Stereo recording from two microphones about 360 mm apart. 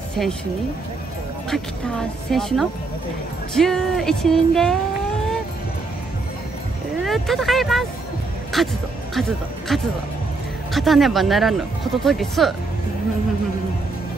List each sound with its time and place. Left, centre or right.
0.2 s speech: centre
1.5 s speech: centre
7.1 s speech: centre
9.7 s speech: centre